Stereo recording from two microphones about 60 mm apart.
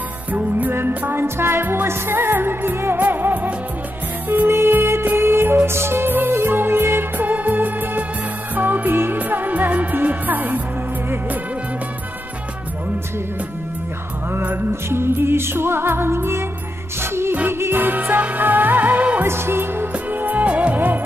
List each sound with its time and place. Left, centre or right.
0.3 s music: right
1.1 s music: right
4.5 s music: right
14.7 s music: right
19.2 s music: right